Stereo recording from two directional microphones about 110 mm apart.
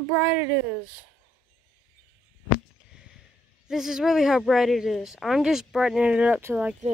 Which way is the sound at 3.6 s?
5° right (ahead or behind).